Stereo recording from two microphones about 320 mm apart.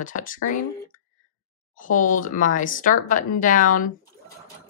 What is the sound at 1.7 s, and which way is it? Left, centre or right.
A woman's voice, left.